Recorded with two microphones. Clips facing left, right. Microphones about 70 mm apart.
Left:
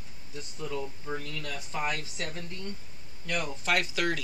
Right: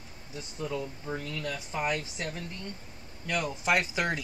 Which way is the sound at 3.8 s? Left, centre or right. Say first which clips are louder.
Even; right.